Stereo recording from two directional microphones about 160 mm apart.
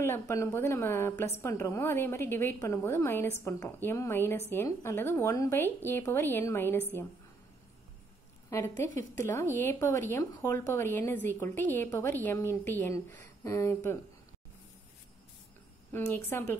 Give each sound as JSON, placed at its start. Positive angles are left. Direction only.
{"t": 0.0, "sound": "a woman's voice", "side_deg": 15}
{"t": 8.5, "sound": "a woman's voice", "side_deg": 20}
{"t": 15.9, "sound": "a woman's voice", "side_deg": 15}